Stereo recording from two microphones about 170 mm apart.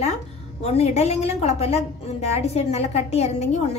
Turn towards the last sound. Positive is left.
turn(degrees=40)  # may be behind; listen again after turning